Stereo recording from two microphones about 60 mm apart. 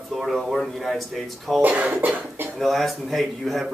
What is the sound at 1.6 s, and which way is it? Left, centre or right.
Speech, right.